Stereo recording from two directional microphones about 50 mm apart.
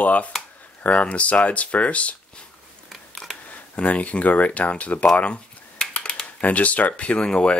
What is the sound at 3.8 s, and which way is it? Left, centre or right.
Speech, left.